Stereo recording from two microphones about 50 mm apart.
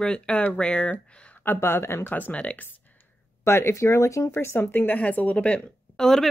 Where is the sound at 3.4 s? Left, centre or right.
Left.